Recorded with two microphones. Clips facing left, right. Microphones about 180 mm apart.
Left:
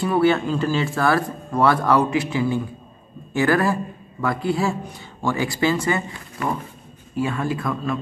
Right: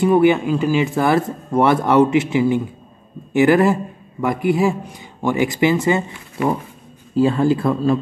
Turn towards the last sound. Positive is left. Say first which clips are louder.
# right 8 dB
turn(degrees=-30)  # may be behind; listen again after turning